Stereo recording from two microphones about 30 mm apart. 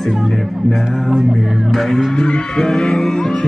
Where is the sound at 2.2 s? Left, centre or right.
Left.